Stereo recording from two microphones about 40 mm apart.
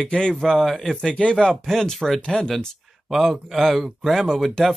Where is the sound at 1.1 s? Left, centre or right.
Left.